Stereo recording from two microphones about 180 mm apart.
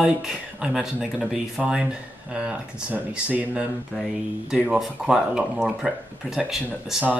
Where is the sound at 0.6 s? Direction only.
5° right (ahead or behind).